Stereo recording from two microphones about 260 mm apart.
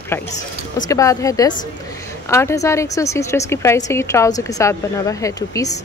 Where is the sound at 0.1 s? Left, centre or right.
Centre.